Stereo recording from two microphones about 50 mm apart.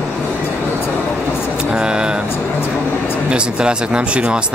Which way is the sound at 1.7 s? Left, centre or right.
Centre.